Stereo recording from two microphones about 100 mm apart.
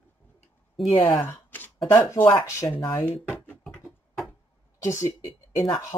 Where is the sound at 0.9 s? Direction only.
55° left (ahead or behind).